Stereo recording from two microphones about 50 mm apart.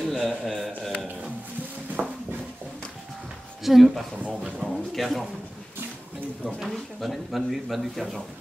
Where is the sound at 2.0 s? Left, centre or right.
Centre.